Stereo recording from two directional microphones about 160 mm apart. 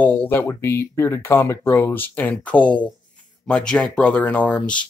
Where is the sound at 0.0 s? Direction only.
10° left (ahead or behind).